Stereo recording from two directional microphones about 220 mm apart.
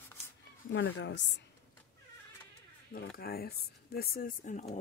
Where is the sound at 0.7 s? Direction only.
60° left (ahead or behind).